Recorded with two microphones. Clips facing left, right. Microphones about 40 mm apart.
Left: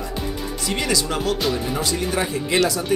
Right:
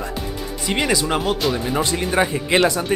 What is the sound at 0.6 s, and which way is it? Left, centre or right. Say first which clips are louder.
Speech: right 3 dB; right.